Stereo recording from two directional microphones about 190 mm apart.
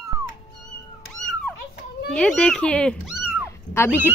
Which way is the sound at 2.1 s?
5° left (ahead or behind).